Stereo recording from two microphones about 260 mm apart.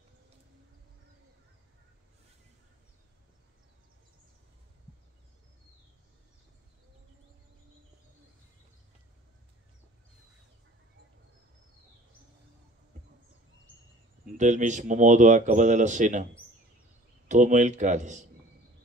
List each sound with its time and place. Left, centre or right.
14.2 s speech: right
17.3 s speech: right